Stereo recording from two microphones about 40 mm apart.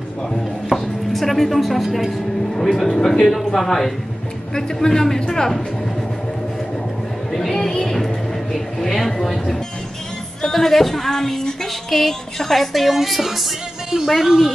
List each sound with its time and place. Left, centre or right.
0.7 s speech: centre
7.3 s speech: centre
7.8 s music: centre
8.5 s a sound: centre
10.4 s speech: centre